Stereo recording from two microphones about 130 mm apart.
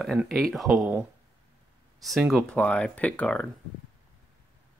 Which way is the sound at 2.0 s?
Centre (ahead or behind).